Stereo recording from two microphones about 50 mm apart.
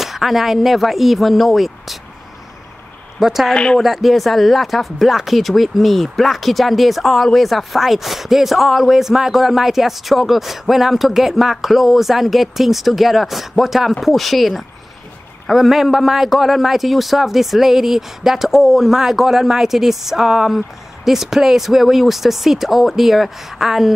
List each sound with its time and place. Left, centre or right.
0.0 s a man's voice: centre
3.2 s a man's voice: centre
3.5 s speech: centre
3.8 s a man's voice: centre